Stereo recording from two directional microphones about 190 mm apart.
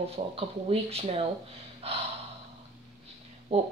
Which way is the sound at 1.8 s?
30° right (ahead or behind).